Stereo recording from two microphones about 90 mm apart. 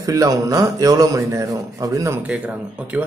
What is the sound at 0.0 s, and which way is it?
Speech, 45° right (ahead or behind).